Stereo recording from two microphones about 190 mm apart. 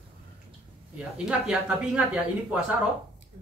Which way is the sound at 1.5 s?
5° right (ahead or behind).